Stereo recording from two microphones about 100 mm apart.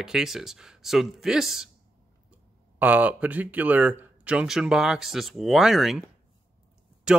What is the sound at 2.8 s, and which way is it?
Speech, 15° right (ahead or behind).